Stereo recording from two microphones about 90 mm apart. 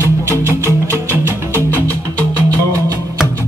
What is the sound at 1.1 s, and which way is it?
Music, 25° right (ahead or behind).